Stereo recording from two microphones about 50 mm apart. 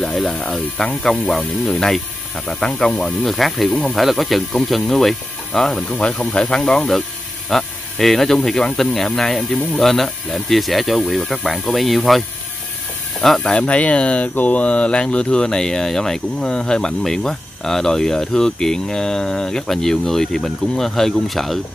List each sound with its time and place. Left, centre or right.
0.0 s speech: centre
2.6 s speech: centre
3.0 s speech: centre
5.9 s speech: left; by 12.3 s centre
13.4 s speech: centre